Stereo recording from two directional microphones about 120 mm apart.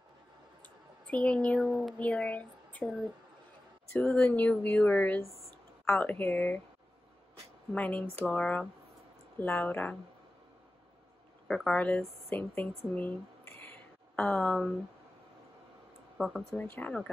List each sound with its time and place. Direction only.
1.0 s speech: 10° left (ahead or behind)
1.7 s speech: 5° right (ahead or behind)
2.0 s speech: 10° left (ahead or behind)
3.9 s speech: 10° left (ahead or behind)
5.2 s a sound: centre (ahead or behind)
5.9 s speech: 15° left (ahead or behind)
7.7 s speech: 15° left (ahead or behind)
11.4 s speech: 5° left (ahead or behind)
16.2 s speech: 10° left (ahead or behind)